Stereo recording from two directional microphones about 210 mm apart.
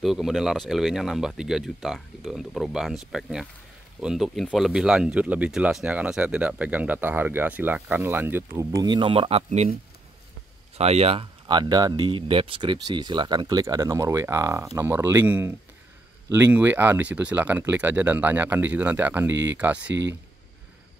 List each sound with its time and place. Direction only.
0.0 s speech: centre (ahead or behind); by 9.8 s 30° right (ahead or behind)
10.8 s speech: 30° right (ahead or behind); by 20.1 s 5° right (ahead or behind)